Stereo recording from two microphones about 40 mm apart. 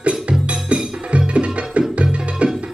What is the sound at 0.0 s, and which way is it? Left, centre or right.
Music, right.